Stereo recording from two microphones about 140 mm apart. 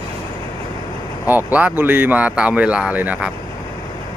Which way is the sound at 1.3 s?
15° right (ahead or behind).